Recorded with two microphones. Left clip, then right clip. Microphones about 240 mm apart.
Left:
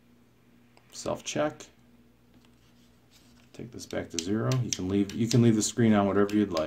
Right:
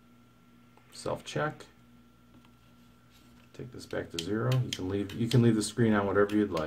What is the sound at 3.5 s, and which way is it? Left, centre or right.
Speech, left.